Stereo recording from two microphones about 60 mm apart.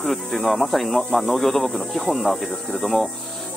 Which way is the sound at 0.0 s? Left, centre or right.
Centre.